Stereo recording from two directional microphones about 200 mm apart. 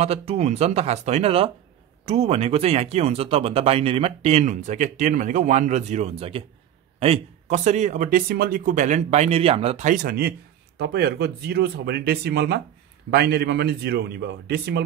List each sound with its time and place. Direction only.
0.0 s speech: 30° right (ahead or behind); by 14.8 s 55° right (ahead or behind)